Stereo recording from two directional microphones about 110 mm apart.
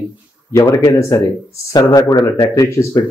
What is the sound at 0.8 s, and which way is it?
Speech, 25° left (ahead or behind).